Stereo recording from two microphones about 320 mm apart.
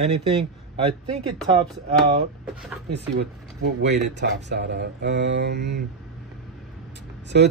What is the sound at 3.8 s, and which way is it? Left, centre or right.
Speech, right.